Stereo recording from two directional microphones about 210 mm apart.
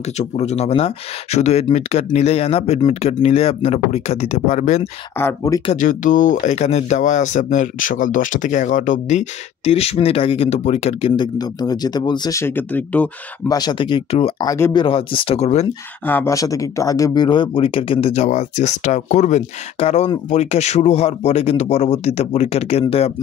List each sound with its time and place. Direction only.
0.2 s speech: 30° left (ahead or behind)
5.2 s speech: 15° left (ahead or behind)
5.7 s speech: 40° left (ahead or behind); by 13.6 s 10° left (ahead or behind)
13.6 s speech: 20° left (ahead or behind)
16.1 s speech: 10° left (ahead or behind); by 23.1 s 30° left (ahead or behind)